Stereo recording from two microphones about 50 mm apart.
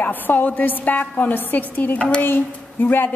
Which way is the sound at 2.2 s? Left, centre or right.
Left.